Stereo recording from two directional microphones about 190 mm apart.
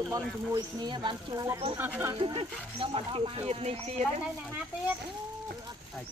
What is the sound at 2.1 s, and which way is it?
Speech, 30° right (ahead or behind).